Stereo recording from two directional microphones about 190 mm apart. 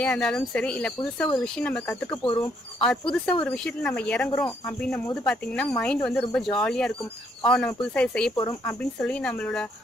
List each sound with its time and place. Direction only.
0.0 s speech: 5° left (ahead or behind)
2.0 s speech: 25° left (ahead or behind)
2.8 s speech: 5° left (ahead or behind)